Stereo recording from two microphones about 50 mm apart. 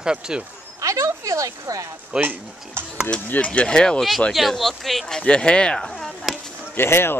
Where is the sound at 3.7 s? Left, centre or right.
Centre.